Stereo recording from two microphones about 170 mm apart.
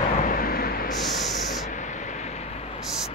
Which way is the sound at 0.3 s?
60° left (ahead or behind).